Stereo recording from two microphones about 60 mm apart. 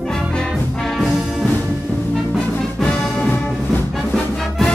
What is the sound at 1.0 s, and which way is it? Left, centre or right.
Brass instrument, centre.